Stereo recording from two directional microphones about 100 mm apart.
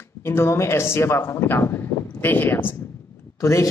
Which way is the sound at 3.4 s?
30° left (ahead or behind).